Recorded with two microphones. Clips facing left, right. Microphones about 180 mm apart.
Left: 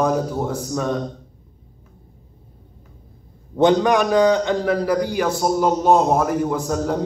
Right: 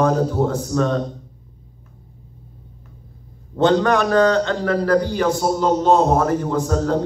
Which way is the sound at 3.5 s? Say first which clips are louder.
Even; 15° left (ahead or behind).